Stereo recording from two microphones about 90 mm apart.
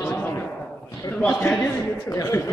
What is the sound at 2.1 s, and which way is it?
Speech, 35° left (ahead or behind).